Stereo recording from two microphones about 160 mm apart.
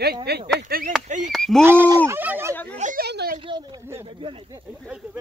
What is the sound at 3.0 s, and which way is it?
Speech, 85° right.